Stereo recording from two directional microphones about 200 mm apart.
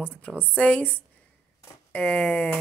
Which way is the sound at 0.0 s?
5° left (ahead or behind).